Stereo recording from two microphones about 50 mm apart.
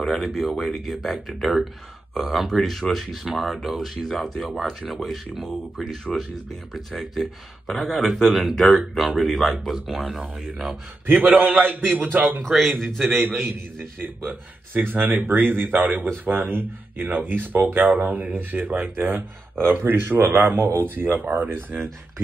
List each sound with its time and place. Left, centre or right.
0.0 s speech: centre
11.1 s speech: right
12.4 s a man's voice: centre
13.9 s speech: right